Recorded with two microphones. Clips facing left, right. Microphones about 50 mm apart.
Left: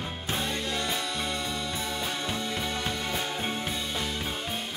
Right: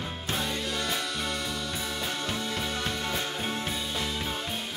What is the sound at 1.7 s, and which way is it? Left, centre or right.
Music, centre.